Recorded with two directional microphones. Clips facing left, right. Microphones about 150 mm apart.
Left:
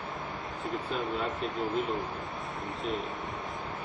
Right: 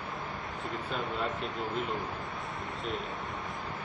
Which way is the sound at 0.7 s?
Centre (ahead or behind).